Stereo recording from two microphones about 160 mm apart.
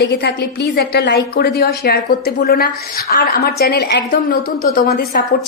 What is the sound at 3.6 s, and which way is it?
A woman's voice, 85° left.